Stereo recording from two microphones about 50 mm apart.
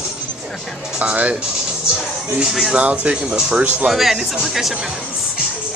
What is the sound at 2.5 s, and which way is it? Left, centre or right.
Speech, centre.